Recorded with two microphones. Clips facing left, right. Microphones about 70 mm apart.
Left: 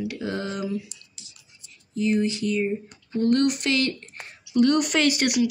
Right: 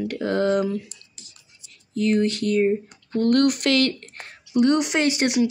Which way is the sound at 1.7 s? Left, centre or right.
Right.